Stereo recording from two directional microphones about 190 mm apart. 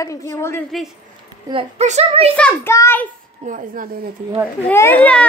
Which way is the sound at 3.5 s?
45° right (ahead or behind).